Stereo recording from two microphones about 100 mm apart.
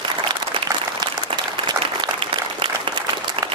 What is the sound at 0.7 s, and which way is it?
Applause, 45° right (ahead or behind).